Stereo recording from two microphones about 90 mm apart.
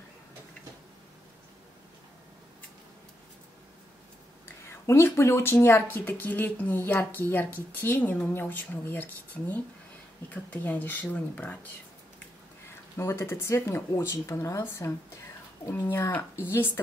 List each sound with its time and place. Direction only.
4.5 s speech: 25° left (ahead or behind)
12.9 s speech: 30° left (ahead or behind)